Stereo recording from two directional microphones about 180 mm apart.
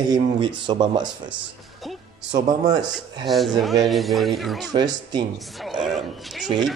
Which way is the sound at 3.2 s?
Centre (ahead or behind).